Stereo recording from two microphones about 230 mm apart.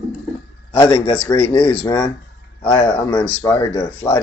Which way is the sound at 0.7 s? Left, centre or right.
Centre.